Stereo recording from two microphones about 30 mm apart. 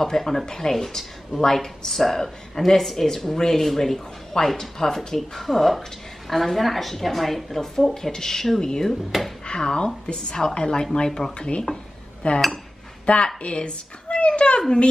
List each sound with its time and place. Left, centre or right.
0.0 s a woman's voice: centre
0.7 s a woman's voice: centre
7.9 s a woman's voice: centre
9.1 s speech: centre
9.5 s a woman's voice: left
12.2 s dishes: left
13.0 s a woman's voice: left
13.4 s a sound: left